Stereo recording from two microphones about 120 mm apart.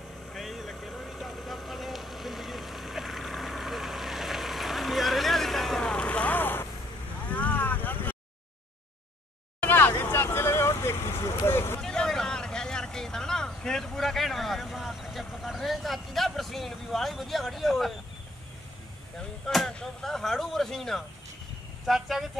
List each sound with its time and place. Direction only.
0.3 s vehicle: centre (ahead or behind); by 8.2 s 15° left (ahead or behind)
9.6 s vehicle: 15° left (ahead or behind)
11.8 s vehicle: 5° left (ahead or behind)
19.1 s arrow: 5° left (ahead or behind)
21.8 s vehicle: centre (ahead or behind)